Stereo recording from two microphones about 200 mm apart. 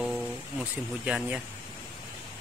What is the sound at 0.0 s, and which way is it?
Music, centre (ahead or behind).